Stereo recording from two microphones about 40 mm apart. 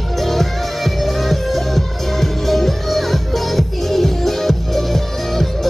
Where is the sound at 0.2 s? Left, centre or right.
Centre.